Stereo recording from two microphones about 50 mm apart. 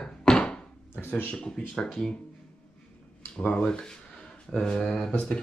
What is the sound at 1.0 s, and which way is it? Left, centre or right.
Speech, left.